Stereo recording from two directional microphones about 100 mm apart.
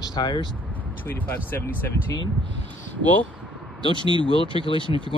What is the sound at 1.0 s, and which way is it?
Speech, 20° left (ahead or behind).